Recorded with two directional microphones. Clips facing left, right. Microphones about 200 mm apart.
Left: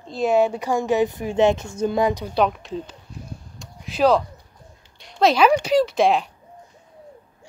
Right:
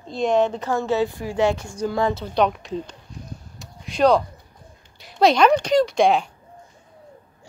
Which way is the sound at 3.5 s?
Centre (ahead or behind).